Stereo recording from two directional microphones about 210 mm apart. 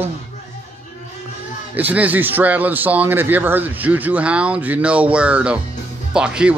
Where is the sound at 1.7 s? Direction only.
10° right (ahead or behind).